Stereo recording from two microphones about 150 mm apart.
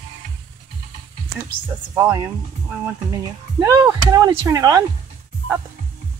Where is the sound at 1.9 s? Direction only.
20° right (ahead or behind).